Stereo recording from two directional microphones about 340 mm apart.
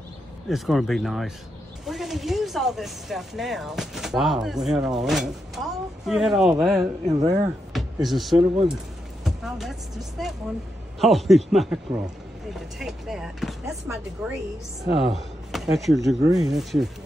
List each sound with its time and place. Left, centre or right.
0.5 s speech: centre
7.7 s speech: centre
14.9 s speech: right
15.1 s speech: centre